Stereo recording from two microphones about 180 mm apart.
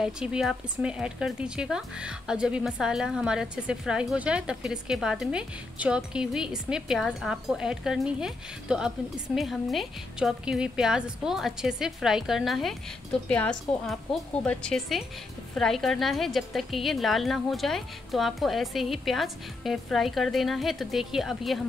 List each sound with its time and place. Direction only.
0.0 s speech: 5° right (ahead or behind)